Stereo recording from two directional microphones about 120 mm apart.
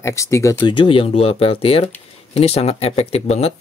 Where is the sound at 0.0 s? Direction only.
25° left (ahead or behind).